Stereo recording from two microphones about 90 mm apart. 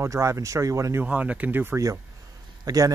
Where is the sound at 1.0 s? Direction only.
15° right (ahead or behind).